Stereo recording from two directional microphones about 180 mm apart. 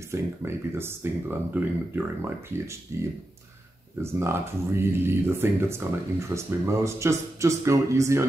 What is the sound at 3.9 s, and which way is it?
Speech, 15° right (ahead or behind).